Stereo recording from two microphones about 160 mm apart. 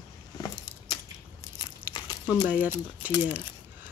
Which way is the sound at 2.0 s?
25° left (ahead or behind).